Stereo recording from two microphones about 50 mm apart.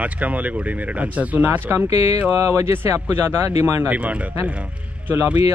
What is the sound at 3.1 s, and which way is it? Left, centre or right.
Speech, right.